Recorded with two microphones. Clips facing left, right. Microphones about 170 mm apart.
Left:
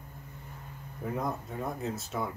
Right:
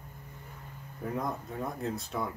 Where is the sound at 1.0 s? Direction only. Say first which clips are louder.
Left 1 dB; centre (ahead or behind).